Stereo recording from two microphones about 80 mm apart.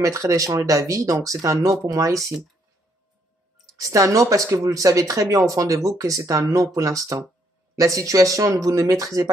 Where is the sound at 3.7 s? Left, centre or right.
Right.